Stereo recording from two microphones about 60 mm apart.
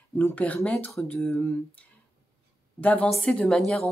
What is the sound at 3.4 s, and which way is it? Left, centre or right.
Speech, centre.